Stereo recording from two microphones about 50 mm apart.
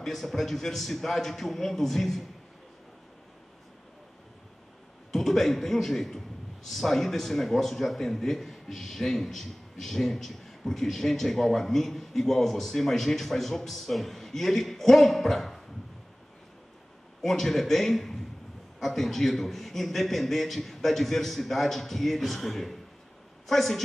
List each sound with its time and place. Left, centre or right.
0.0 s a man's voice: centre
5.1 s a man's voice: centre
17.2 s a man's voice: centre